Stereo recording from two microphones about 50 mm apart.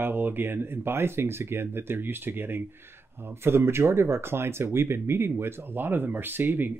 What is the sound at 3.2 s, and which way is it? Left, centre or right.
Speech, right.